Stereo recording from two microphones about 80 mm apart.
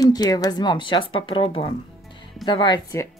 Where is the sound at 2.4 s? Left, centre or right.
Left.